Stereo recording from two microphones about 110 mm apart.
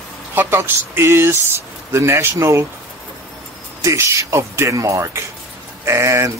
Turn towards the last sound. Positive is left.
turn(degrees=-25)  # may be behind; listen again after turning